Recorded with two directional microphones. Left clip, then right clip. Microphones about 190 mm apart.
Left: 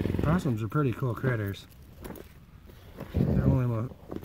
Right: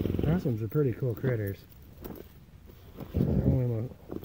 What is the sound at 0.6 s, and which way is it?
Speech, 20° left (ahead or behind).